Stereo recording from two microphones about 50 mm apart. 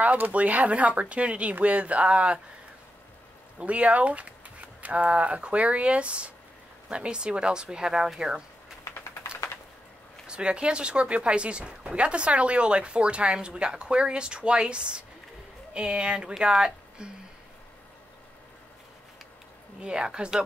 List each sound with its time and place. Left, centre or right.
0.0 s speech: right
3.5 s speech: right; by 8.7 s centre
10.2 s speech: centre
19.8 s speech: centre